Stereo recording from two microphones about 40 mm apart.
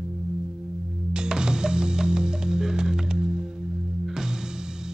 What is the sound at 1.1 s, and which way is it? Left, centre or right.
Music, right.